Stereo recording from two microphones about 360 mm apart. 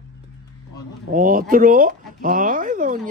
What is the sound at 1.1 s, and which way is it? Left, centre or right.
Speech, right.